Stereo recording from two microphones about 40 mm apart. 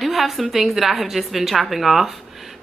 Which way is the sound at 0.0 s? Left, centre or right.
Centre.